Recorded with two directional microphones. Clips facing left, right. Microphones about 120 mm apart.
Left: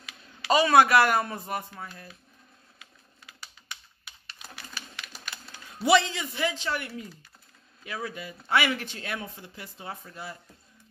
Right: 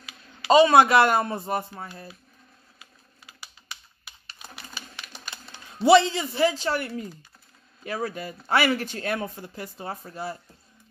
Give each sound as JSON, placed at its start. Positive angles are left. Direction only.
{"t": 0.5, "sound": "speech", "side_deg": -25}
{"t": 4.3, "sound": "music", "side_deg": -25}
{"t": 7.8, "sound": "speech", "side_deg": -40}